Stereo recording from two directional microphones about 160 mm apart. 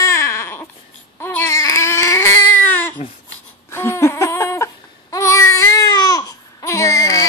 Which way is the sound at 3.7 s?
15° left (ahead or behind).